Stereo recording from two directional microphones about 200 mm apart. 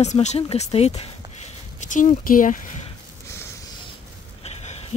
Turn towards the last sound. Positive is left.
turn(degrees=30)  # may be behind; listen again after turning